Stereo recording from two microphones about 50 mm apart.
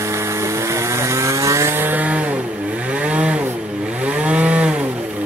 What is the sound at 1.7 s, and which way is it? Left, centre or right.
Chainsaw, right.